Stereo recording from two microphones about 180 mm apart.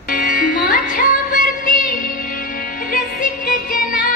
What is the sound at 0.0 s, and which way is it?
Music, 50° left (ahead or behind).